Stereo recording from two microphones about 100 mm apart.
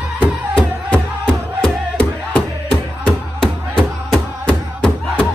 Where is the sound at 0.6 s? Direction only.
10° left (ahead or behind).